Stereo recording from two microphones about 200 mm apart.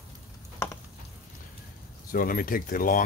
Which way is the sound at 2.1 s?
45° left (ahead or behind).